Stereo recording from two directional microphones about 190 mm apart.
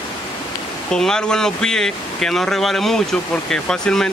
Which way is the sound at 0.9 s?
5° left (ahead or behind).